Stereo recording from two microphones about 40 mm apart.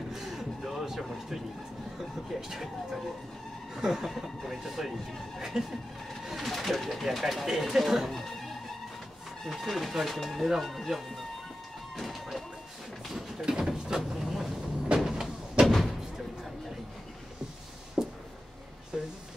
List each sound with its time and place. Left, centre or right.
0.1 s a sound: centre
2.2 s speech: centre
9.5 s speech: centre
12.0 s speech: centre
13.1 s a sound: centre
14.2 s vehicle: centre
14.9 s door: right
15.6 s slam: centre
18.0 s a sound: centre
18.9 s music: centre